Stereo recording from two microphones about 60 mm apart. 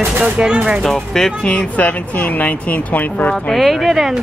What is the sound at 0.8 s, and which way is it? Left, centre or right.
Speech, centre.